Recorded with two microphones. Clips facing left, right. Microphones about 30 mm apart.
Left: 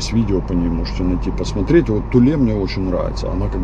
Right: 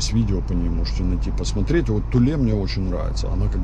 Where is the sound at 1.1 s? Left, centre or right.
Centre.